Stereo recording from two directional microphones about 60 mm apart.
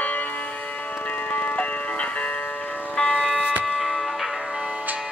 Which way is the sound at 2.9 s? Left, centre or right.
Centre.